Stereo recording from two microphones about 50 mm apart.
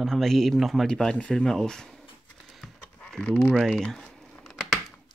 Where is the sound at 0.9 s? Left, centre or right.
Centre.